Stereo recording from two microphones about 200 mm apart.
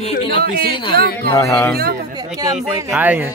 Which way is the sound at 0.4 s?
50° right (ahead or behind).